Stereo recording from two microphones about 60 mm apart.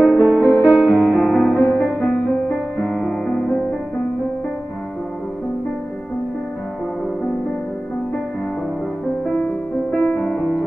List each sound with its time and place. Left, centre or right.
0.0 s music: left
1.6 s music: left
3.1 s music: centre
9.2 s music: centre